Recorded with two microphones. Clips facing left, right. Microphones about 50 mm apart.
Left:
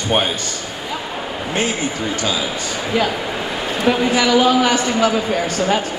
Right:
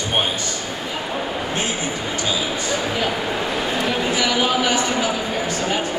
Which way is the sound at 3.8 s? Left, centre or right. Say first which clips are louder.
Left 9 dB; left.